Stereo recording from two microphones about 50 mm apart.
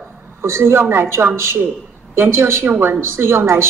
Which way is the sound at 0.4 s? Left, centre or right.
Right.